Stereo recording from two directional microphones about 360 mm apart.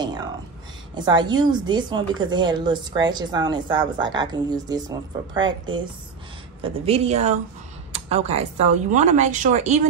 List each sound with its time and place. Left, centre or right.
0.9 s a woman's voice: centre